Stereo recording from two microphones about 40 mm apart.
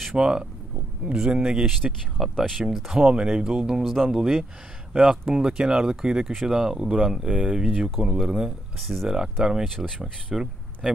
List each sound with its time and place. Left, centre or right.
0.2 s speech: right
2.1 s speech: centre
2.9 s speech: centre
3.8 s speech: centre
4.1 s speech: centre
4.9 s speech: right
7.2 s speech: right
8.0 s speech: centre
8.8 s speech: centre
9.1 s speech: centre